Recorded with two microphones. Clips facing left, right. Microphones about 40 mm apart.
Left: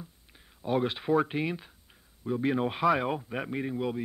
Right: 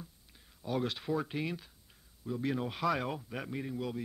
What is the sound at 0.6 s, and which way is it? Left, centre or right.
Speech, left.